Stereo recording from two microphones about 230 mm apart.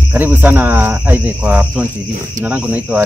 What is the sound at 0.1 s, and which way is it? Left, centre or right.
Speech, centre.